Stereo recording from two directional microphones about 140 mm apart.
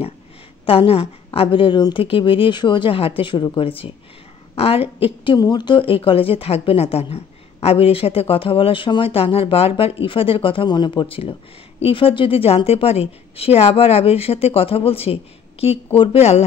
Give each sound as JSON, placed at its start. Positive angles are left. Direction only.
{"t": 0.7, "sound": "a woman's voice", "side_deg": 45}